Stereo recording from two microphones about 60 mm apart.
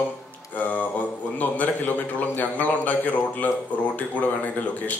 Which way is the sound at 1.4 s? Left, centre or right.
Left.